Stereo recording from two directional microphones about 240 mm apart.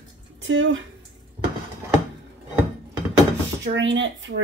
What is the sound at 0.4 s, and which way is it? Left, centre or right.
Speech, right.